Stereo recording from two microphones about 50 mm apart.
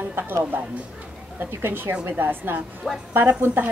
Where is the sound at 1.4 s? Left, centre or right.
Right.